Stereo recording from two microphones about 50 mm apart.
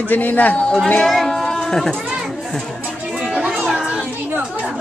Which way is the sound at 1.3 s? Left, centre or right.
Centre.